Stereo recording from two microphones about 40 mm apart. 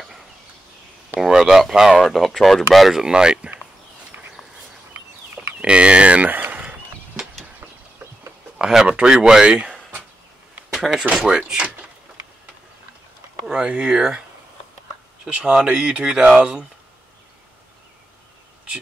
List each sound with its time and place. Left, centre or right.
1.2 s speech: centre
3.0 s speech: centre
5.6 s speech: right
6.3 s a sound: right
8.5 s a sound: centre
8.8 s speech: right
10.8 s speech: centre
11.3 s speech: right
13.5 s speech: right
15.2 s speech: right